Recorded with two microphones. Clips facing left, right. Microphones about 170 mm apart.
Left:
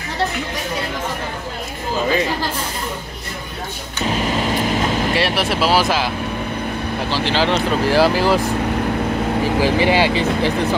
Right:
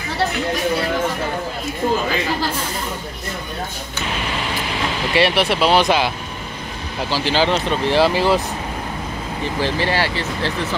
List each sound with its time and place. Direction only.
4.1 s vehicle: 40° left (ahead or behind)
5.1 s speech: centre (ahead or behind)
7.1 s speech: centre (ahead or behind)
9.4 s speech: 15° left (ahead or behind)